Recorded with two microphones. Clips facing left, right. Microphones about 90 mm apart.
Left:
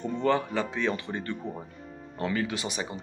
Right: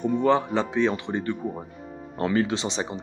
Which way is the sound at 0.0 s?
15° right (ahead or behind).